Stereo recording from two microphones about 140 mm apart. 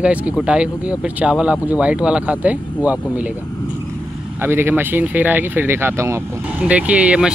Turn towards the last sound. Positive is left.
turn(degrees=-10)  # may be behind; listen again after turning